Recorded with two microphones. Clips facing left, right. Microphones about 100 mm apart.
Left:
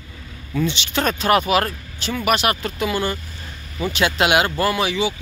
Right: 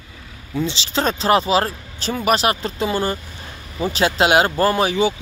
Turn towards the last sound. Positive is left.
turn(degrees=-45)  # may be behind; listen again after turning